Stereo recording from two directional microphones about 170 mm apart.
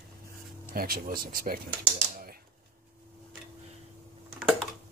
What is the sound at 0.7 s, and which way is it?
Speech, 60° right (ahead or behind).